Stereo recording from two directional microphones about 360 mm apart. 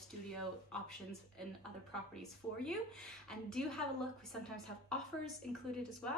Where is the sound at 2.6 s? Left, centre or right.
Centre.